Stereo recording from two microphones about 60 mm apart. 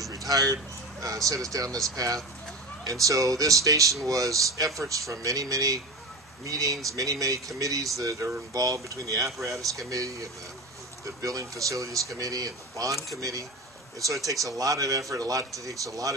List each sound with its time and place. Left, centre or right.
0.3 s speech: right
2.8 s speech: right